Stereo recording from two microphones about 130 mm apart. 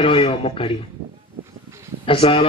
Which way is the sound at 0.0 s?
45° left (ahead or behind).